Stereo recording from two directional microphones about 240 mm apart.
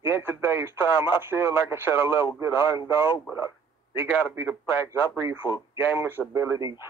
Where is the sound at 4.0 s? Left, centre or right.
Centre.